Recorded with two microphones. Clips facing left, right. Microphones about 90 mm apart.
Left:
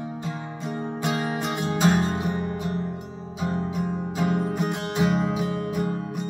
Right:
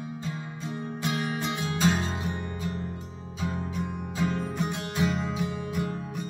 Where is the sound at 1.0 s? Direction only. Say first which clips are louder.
Left 3 dB; 30° left (ahead or behind).